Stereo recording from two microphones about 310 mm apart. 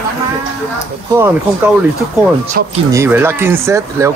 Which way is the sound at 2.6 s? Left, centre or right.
Right.